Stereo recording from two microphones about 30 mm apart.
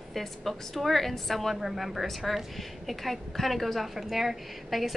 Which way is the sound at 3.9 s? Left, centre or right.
Centre.